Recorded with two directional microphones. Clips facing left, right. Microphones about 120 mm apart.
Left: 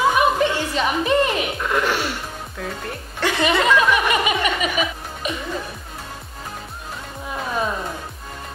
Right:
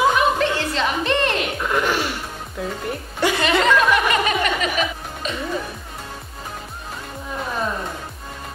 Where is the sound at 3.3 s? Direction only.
10° left (ahead or behind).